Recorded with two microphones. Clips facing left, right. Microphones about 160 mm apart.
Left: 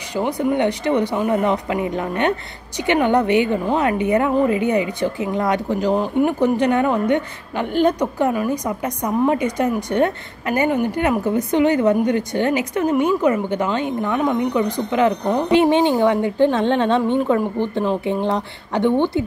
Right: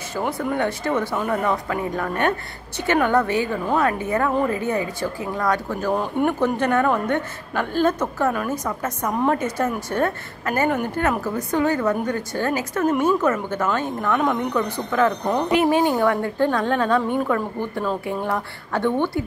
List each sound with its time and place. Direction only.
0.3 s a woman's voice: 20° left (ahead or behind)